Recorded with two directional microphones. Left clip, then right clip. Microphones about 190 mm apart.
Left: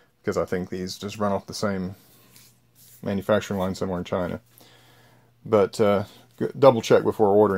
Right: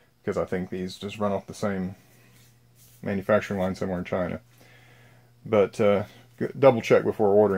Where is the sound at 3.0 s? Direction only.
40° left (ahead or behind).